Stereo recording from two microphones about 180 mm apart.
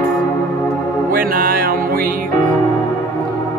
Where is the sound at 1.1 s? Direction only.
50° right (ahead or behind).